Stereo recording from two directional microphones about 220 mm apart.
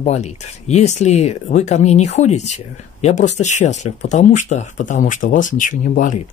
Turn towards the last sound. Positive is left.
turn(degrees=35)  # may be behind; listen again after turning